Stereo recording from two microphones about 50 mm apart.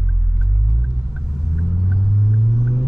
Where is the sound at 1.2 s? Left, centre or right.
Centre.